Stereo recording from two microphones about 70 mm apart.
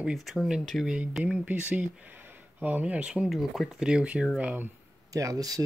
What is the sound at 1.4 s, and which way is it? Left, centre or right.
Speech, right.